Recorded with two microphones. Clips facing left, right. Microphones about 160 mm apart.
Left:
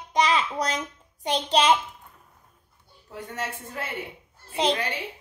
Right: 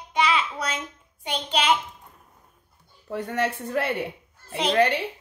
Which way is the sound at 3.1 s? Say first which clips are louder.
Right 8 dB; 70° right (ahead or behind).